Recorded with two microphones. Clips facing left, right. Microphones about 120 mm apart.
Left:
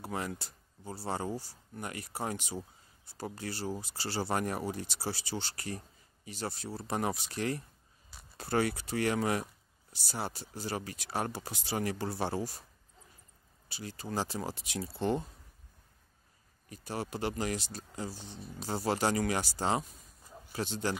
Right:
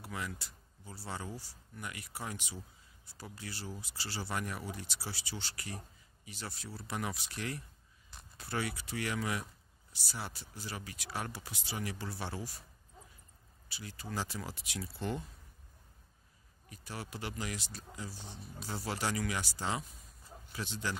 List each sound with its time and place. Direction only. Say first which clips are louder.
0.0 s speech: left 5 dB; 40° left (ahead or behind)
13.7 s speech: left 4 dB; 35° left (ahead or behind)
16.6 s speech: left 7 dB; 35° left (ahead or behind)